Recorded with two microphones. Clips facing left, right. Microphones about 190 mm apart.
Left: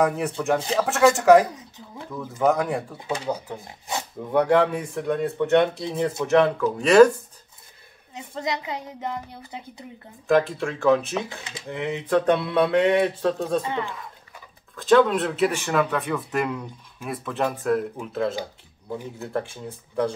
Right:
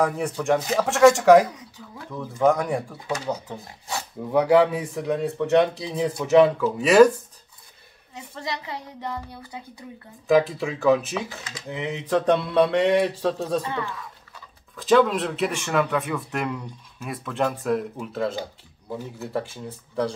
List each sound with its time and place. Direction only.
0.0 s speech: centre (ahead or behind)
3.6 s a woman's voice: 20° left (ahead or behind)
4.3 s speech: 5° right (ahead or behind)
8.1 s a woman's voice: 20° left (ahead or behind)
10.2 s speech: centre (ahead or behind)
13.6 s a woman's voice: 20° left (ahead or behind)
14.8 s speech: centre (ahead or behind)